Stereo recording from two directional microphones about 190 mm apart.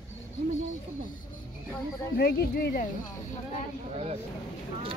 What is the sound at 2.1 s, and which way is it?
Speech, 55° left (ahead or behind).